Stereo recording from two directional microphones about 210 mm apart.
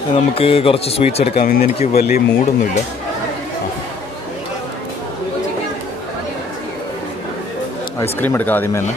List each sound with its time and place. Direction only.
0.1 s speech: 25° left (ahead or behind)
1.4 s speech: 45° left (ahead or behind)
8.0 s speech: 10° left (ahead or behind)